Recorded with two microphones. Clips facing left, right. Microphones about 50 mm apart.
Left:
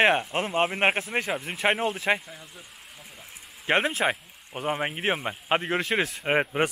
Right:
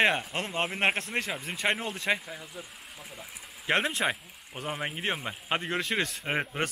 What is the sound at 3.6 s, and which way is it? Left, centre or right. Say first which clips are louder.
Speech: left 3 dB; centre.